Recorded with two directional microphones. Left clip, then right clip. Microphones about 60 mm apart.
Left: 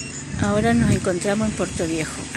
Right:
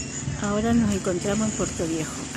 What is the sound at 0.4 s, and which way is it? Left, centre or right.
Speech, left.